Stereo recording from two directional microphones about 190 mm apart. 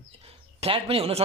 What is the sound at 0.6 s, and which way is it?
Speech, 30° right (ahead or behind).